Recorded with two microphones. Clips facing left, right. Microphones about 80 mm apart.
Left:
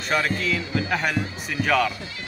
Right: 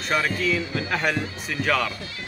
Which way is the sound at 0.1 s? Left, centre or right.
Centre.